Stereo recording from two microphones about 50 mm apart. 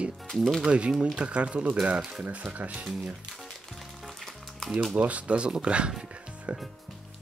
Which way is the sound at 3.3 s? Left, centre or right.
Centre.